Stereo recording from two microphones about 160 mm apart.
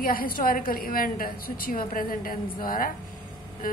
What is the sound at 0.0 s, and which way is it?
A woman's voice, 60° left (ahead or behind).